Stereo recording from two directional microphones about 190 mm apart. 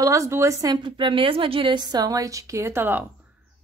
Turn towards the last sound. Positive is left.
turn(degrees=-10)  # may be behind; listen again after turning